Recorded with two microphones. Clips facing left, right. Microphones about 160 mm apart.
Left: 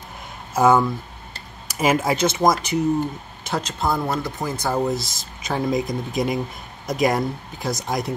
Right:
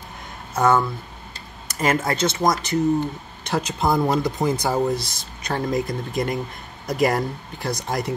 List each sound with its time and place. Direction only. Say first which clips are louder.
0.6 s speech: left 2 dB; 10° left (ahead or behind)
3.6 s speech: right 4 dB; 15° right (ahead or behind)
4.7 s speech: right 1 dB; centre (ahead or behind)